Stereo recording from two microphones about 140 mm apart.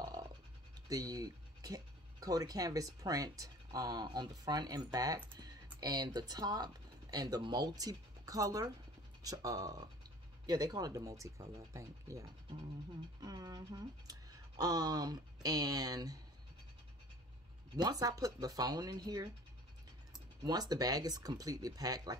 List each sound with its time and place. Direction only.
0.0 s scratch: 30° right (ahead or behind)
0.8 s speech: 25° right (ahead or behind)
17.7 s speech: 30° right (ahead or behind)
20.4 s speech: 30° right (ahead or behind)